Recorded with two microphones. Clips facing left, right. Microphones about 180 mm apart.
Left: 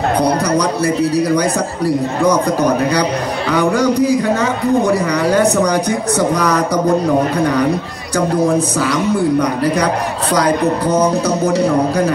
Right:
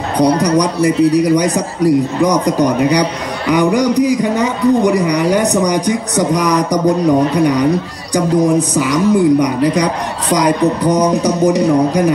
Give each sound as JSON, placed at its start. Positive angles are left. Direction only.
{"t": 0.2, "sound": "speech", "side_deg": -20}